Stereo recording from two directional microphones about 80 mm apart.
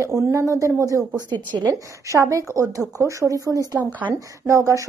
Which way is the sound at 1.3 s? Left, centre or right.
Right.